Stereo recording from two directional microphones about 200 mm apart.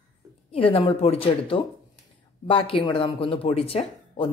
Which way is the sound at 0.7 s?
30° left (ahead or behind).